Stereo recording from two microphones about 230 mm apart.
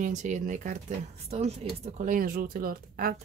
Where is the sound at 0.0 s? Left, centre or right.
Right.